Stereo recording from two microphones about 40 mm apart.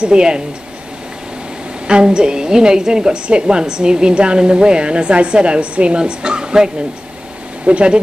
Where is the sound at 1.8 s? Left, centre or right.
Right.